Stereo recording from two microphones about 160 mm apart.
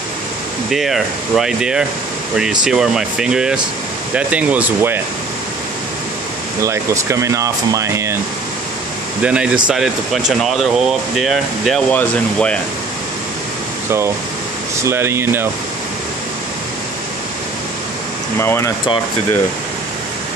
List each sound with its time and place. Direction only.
0.7 s speech: centre (ahead or behind)
6.6 s speech: 20° right (ahead or behind)
9.2 s speech: 10° right (ahead or behind); by 12.5 s 10° left (ahead or behind)
13.8 s speech: 15° right (ahead or behind)
18.4 s speech: 15° left (ahead or behind)